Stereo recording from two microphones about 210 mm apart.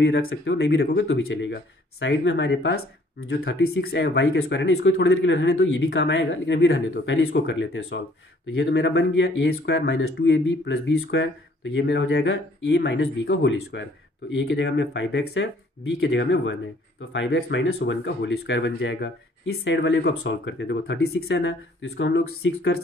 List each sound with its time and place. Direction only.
0.0 s speech: 70° left (ahead or behind)
3.8 s speech: 50° left (ahead or behind)
9.5 s speech: 50° left (ahead or behind)
9.8 s speech: 70° left (ahead or behind); by 21.1 s 50° left (ahead or behind)
21.1 s speech: 70° left (ahead or behind)